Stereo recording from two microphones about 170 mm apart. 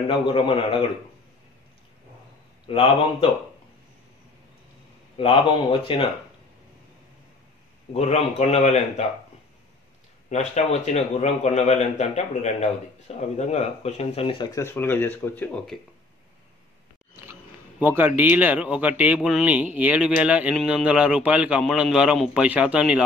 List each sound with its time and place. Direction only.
0.1 s a man's voice: 30° left (ahead or behind)
2.7 s a man's voice: 30° left (ahead or behind)
5.1 s a man's voice: 30° left (ahead or behind)
7.9 s a man's voice: 40° left (ahead or behind)
10.3 s a man's voice: 40° left (ahead or behind)
14.5 s speech: 15° left (ahead or behind)
17.3 s speech: 10° right (ahead or behind)